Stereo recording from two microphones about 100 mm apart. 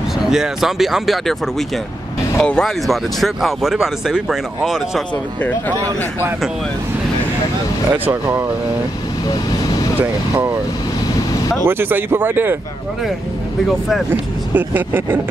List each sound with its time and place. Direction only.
0.3 s speech: 5° right (ahead or behind)
2.3 s speech: 10° left (ahead or behind)
7.9 s speech: 20° right (ahead or behind)
11.6 s speech: 20° right (ahead or behind)
13.7 s speech: centre (ahead or behind)
14.5 s speech: 20° right (ahead or behind)